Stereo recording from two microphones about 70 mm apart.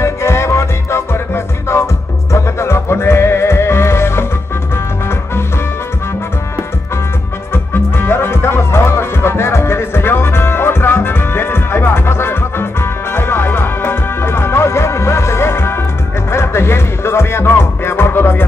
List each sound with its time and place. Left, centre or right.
0.0 s music: left
7.5 s music: left